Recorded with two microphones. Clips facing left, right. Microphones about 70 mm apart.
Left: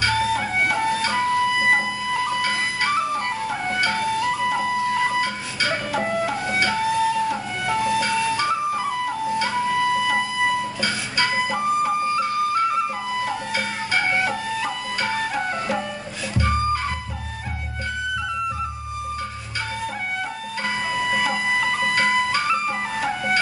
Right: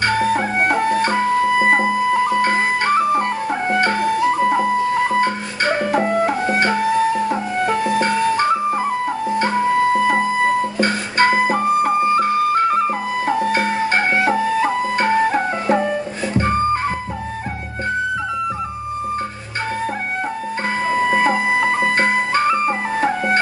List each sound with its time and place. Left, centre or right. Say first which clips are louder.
0.0 s music: right 4 dB; right
20.9 s music: right 8 dB; right